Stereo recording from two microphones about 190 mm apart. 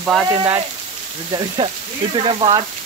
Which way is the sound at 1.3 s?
25° right (ahead or behind).